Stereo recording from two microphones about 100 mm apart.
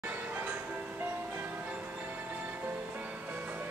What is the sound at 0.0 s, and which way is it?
Music, 20° right (ahead or behind).